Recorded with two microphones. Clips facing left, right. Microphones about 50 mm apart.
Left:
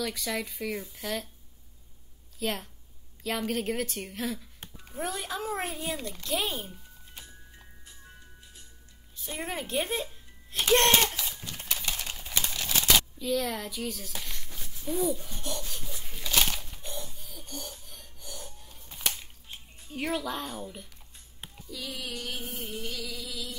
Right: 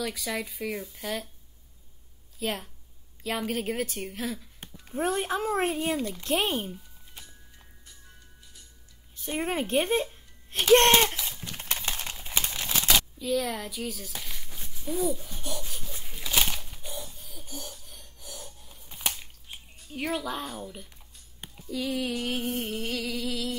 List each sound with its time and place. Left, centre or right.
0.0 s speech: centre
2.3 s a woman's voice: centre
4.9 s a woman's voice: right
5.9 s speech: centre
6.2 s a woman's voice: right
7.5 s music: centre
9.1 s a woman's voice: right
11.4 s typing: right
12.2 s crumpling: centre
12.7 s a sound: centre
16.3 s wheeze: centre
17.8 s gasp: centre
19.9 s speech: centre
21.6 s a sound: right